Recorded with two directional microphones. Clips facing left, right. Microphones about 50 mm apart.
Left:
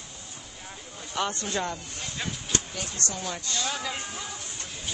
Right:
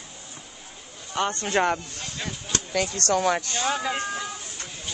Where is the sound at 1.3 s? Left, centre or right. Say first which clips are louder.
Right 8 dB; right.